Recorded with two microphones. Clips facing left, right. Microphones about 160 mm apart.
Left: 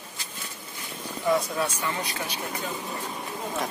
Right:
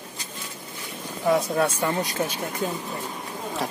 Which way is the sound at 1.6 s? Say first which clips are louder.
Right 6 dB; 50° right (ahead or behind).